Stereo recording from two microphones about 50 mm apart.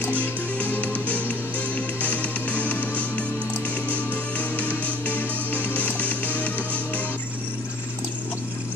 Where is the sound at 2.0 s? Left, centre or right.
Left.